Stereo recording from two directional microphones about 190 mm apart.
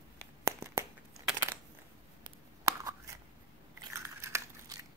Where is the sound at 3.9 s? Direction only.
15° right (ahead or behind).